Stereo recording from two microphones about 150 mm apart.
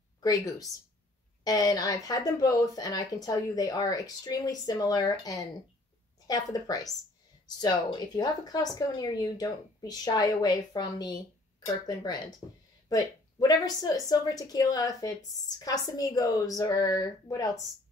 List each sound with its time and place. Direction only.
0.2 s speech: 25° left (ahead or behind)